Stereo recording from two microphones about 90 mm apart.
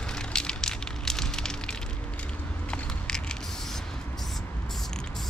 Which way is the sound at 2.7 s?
10° left (ahead or behind).